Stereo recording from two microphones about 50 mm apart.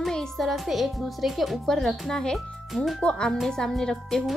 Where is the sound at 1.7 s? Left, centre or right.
Centre.